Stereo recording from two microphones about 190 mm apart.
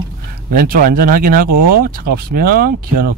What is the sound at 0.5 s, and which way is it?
Speech, 50° right (ahead or behind).